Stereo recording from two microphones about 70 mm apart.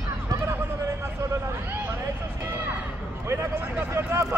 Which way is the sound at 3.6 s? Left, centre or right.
Right.